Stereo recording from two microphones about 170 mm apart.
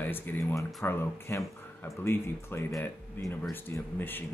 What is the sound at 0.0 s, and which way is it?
Speech, 10° left (ahead or behind).